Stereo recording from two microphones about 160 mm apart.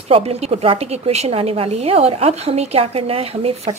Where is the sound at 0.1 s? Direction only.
40° right (ahead or behind).